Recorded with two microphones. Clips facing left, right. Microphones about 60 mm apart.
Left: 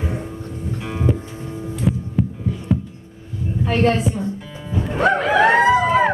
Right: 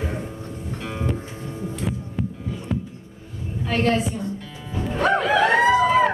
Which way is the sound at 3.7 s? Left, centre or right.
Left.